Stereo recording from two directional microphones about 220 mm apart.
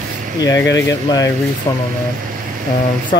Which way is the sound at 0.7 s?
15° left (ahead or behind).